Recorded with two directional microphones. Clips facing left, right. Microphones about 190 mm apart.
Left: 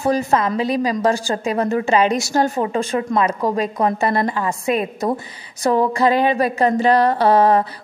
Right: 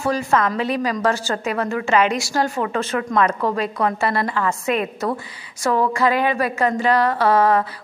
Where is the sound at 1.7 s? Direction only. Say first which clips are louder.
Left 1 dB; 35° left (ahead or behind).